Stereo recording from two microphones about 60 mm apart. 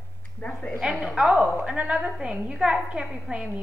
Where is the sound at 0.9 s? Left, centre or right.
Centre.